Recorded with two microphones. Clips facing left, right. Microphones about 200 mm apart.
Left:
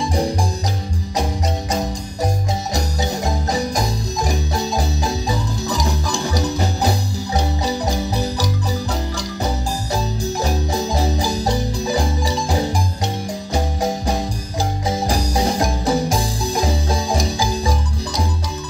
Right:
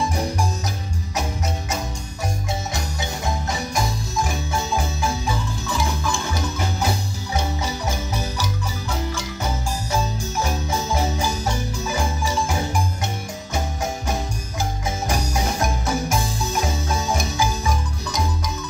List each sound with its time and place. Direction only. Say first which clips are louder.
0.1 s music: left 4 dB; 35° left (ahead or behind)
2.7 s marimba: left 6 dB; 40° left (ahead or behind)
9.9 s marimba: left 2 dB; 35° left (ahead or behind)
13.5 s music: left 5 dB; 35° left (ahead or behind)